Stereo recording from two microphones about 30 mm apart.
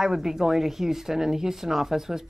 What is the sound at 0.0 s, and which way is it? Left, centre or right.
Speech, centre.